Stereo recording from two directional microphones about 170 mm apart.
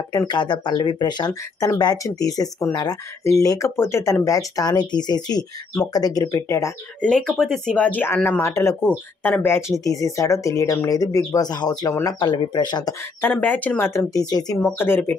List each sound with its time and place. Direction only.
0.1 s speech: 25° left (ahead or behind)
7.0 s speech: 5° left (ahead or behind); by 12.9 s 25° left (ahead or behind)
13.2 s speech: 10° left (ahead or behind)
14.8 s speech: 10° left (ahead or behind)